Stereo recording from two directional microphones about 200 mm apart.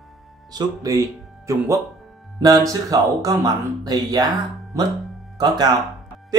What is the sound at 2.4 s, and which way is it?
Speech, 15° right (ahead or behind).